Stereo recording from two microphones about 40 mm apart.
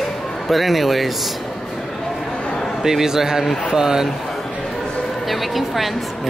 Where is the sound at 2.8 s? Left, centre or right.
Centre.